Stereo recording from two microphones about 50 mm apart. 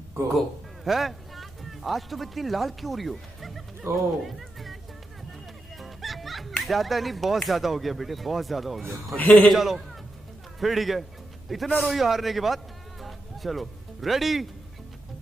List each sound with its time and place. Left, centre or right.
0.4 s a man's voice: centre
3.9 s speech: right
4.4 s music: centre
5.8 s music: centre
6.6 s speech: centre
9.1 s a man's voice: left
9.5 s a man's voice: centre